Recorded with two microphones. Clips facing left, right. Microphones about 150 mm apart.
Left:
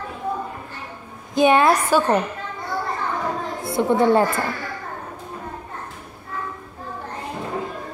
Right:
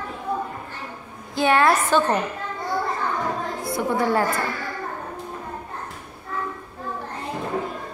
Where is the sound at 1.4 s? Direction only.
20° left (ahead or behind).